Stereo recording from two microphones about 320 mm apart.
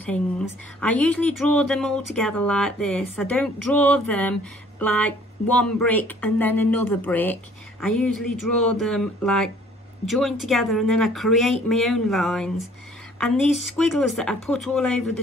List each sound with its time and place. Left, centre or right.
0.7 s speech: centre
13.5 s speech: right
13.7 s speech: centre